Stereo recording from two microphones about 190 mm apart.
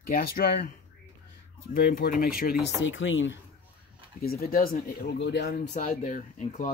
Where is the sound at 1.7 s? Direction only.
50° left (ahead or behind).